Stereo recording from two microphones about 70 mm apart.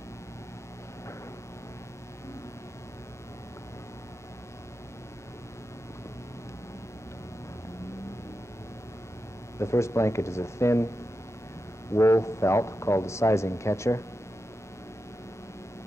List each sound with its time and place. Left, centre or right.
9.6 s speech: left
11.9 s speech: left